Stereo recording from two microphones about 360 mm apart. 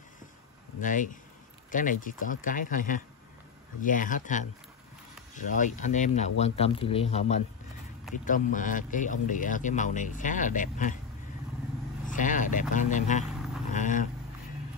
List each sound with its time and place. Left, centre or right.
0.7 s speech: left
12.1 s speech: left